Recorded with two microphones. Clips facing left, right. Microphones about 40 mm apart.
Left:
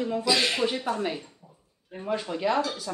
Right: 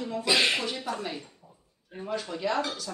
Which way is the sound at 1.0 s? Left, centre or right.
Centre.